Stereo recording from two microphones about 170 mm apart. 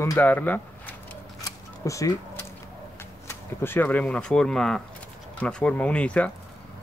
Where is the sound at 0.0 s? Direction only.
15° left (ahead or behind).